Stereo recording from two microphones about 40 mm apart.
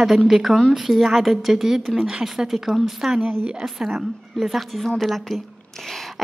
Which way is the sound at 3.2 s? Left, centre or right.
Right.